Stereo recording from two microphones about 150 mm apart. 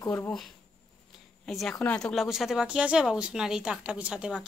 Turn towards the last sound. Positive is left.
turn(degrees=-5)  # may be behind; listen again after turning